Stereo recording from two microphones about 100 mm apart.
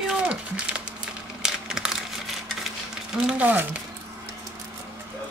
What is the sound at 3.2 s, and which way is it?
Speech, 15° right (ahead or behind).